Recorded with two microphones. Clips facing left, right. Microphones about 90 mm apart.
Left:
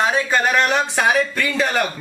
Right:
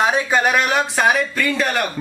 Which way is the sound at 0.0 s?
15° right (ahead or behind).